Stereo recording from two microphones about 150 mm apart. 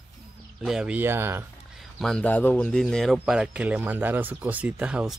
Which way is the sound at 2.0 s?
5° left (ahead or behind).